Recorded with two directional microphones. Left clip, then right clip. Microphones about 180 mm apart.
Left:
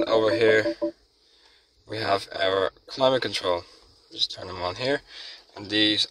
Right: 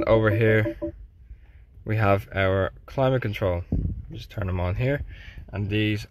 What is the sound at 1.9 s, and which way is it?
Speech, 5° right (ahead or behind).